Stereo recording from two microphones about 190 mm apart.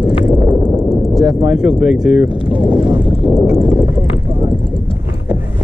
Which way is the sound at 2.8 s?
30° right (ahead or behind).